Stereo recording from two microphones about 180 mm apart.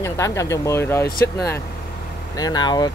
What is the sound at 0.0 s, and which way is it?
Speech, 15° left (ahead or behind).